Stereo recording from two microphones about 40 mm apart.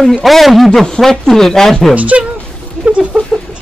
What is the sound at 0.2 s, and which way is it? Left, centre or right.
Speech, centre.